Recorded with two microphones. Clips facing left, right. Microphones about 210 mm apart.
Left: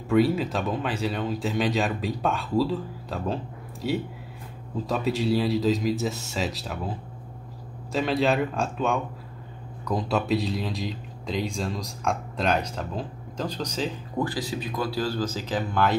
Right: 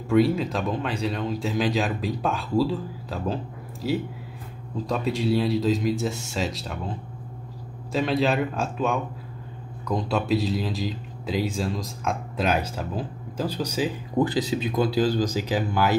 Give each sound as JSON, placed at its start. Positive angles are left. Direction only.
{"t": 0.1, "sound": "speech", "side_deg": 0}
{"t": 7.9, "sound": "speech", "side_deg": 0}
{"t": 14.1, "sound": "speech", "side_deg": -20}